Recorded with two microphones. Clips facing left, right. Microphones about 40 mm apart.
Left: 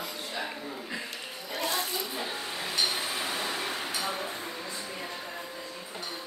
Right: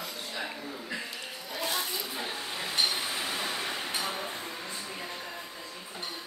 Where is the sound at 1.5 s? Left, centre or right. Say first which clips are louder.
Left 2 dB; left.